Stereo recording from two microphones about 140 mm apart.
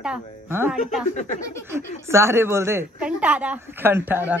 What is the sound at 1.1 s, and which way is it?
Speech, 60° left (ahead or behind).